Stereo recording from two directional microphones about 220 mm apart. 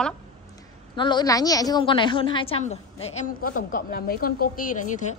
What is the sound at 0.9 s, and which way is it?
A woman's voice, 20° left (ahead or behind).